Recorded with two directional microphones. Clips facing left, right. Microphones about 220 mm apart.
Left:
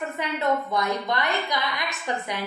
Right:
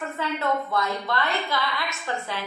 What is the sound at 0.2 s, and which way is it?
A woman's voice, 15° left (ahead or behind).